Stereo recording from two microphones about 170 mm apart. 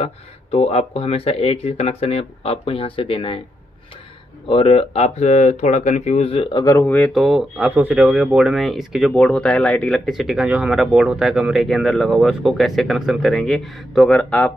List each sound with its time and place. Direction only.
0.0 s speech: 35° left (ahead or behind)
4.5 s speech: 30° left (ahead or behind); by 14.5 s 5° left (ahead or behind)